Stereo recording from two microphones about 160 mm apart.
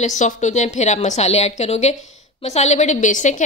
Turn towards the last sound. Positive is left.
turn(degrees=50)  # may be behind; listen again after turning